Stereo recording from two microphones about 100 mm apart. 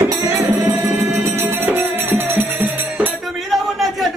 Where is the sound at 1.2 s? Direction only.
20° right (ahead or behind).